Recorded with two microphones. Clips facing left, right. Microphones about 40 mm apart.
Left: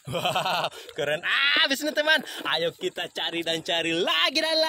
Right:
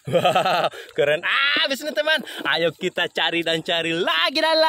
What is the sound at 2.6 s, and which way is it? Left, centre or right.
Speech, right.